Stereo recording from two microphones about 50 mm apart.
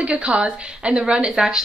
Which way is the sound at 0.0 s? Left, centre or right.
Right.